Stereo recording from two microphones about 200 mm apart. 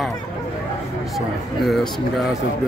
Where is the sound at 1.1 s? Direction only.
Centre (ahead or behind).